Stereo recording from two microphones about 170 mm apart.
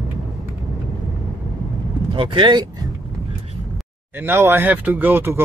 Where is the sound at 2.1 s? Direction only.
30° right (ahead or behind).